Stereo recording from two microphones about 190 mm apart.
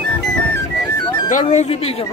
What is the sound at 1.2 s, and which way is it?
Speech, 40° left (ahead or behind).